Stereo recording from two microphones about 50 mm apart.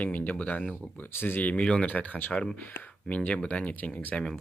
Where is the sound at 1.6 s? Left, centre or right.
Centre.